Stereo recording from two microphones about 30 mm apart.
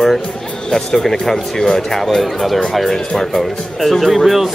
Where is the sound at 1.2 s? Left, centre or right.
Centre.